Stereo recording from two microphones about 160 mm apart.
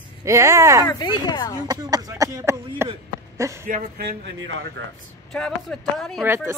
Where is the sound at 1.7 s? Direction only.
20° right (ahead or behind).